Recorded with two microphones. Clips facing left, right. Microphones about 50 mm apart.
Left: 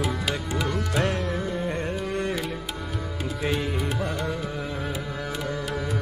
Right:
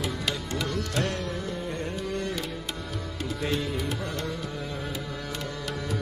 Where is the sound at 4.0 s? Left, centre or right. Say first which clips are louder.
Left 4 dB; centre.